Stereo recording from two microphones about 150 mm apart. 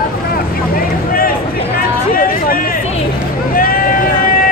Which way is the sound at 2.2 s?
70° left (ahead or behind).